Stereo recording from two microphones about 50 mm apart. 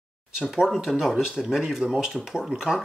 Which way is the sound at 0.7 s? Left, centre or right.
Centre.